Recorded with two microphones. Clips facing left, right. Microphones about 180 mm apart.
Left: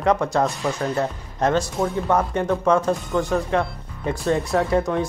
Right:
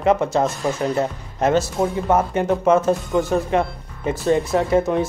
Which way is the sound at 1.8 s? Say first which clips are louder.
Right 2 dB; 25° right (ahead or behind).